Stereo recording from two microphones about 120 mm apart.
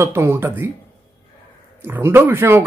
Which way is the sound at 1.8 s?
15° right (ahead or behind).